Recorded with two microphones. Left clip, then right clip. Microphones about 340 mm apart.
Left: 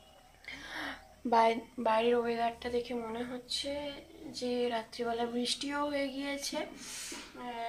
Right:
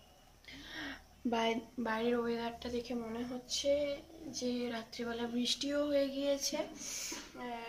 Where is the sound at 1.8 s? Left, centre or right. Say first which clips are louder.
Left 7 dB; centre.